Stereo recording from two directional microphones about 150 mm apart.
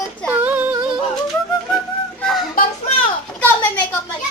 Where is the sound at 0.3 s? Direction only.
10° right (ahead or behind).